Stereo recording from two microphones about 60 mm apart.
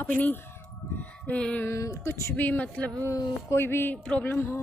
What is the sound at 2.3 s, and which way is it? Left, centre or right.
Music, left.